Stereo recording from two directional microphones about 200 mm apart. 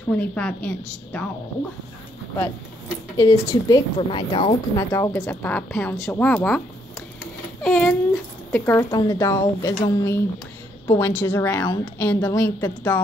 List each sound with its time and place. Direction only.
0.2 s speech: 5° left (ahead or behind)
3.2 s speech: 20° left (ahead or behind)
4.9 s speech: 15° left (ahead or behind)
7.6 s speech: 5° left (ahead or behind)